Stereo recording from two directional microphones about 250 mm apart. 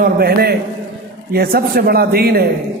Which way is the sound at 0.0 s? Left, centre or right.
Right.